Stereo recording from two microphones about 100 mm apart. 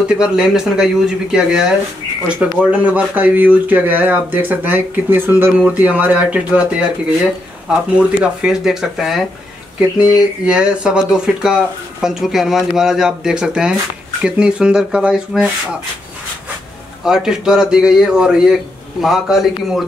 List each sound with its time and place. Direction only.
0.1 s speech: 5° right (ahead or behind)
2.7 s speech: 15° right (ahead or behind)
7.7 s speech: 10° right (ahead or behind)
17.0 s speech: 5° right (ahead or behind)